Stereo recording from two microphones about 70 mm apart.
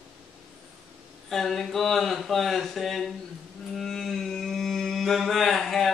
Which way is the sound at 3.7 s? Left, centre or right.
Centre.